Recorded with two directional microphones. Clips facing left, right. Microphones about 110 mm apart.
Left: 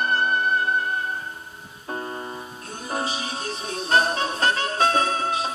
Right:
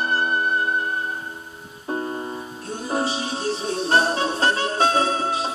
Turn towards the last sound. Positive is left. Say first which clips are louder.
# right 2 dB
turn(degrees=-30)  # may be behind; listen again after turning